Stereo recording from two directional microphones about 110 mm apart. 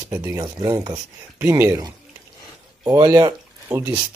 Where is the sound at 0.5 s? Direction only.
35° right (ahead or behind).